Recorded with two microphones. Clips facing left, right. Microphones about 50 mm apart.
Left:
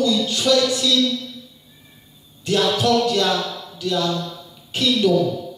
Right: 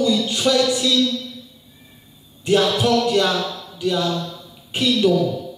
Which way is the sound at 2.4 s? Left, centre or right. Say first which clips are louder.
Right 2 dB; right.